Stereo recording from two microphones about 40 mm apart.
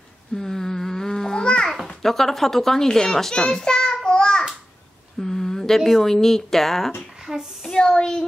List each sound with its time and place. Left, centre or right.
0.4 s babbling: centre
2.0 s a child's voice: centre
5.2 s a sound: centre
5.8 s a woman's voice: centre
7.7 s speech: centre